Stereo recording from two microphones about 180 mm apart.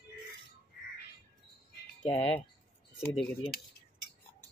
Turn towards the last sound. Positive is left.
turn(degrees=5)  # may be behind; listen again after turning